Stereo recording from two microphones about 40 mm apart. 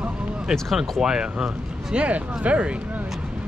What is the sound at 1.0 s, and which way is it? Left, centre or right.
Speech, centre.